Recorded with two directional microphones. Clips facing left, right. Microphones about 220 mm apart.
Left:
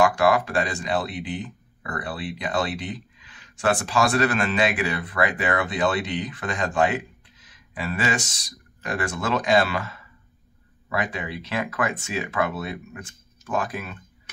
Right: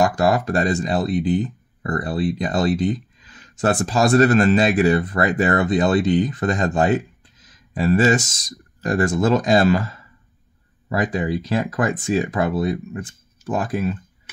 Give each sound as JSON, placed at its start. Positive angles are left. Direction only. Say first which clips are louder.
{"t": 0.0, "sound": "speech", "louder": "right 1 dB", "side_deg": -40}